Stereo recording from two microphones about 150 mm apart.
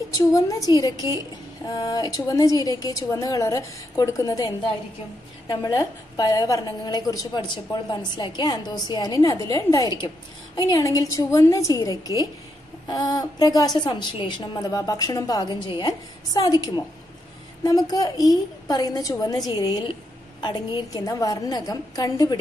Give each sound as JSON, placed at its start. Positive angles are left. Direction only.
{"t": 0.1, "sound": "a woman's voice", "side_deg": 20}